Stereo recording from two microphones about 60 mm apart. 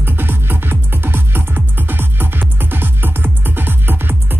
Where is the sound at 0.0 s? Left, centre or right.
Right.